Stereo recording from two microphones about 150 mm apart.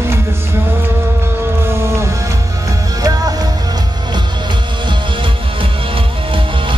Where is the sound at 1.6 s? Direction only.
20° right (ahead or behind).